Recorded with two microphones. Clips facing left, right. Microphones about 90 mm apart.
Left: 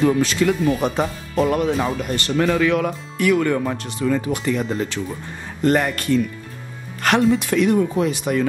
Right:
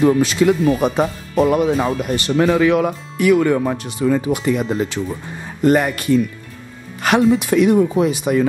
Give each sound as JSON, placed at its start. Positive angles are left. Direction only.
{"t": 0.0, "sound": "speech", "side_deg": -15}